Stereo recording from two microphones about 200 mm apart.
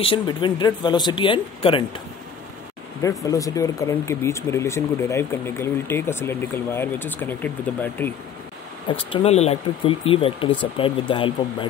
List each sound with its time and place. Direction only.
0.0 s speech: 25° left (ahead or behind)
3.3 s speech: 15° left (ahead or behind)
8.8 s speech: 25° left (ahead or behind)